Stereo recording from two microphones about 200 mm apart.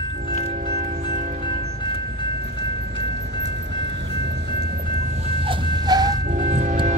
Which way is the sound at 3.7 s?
60° right (ahead or behind).